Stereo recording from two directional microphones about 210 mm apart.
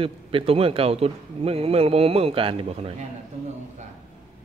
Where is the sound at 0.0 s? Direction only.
25° right (ahead or behind).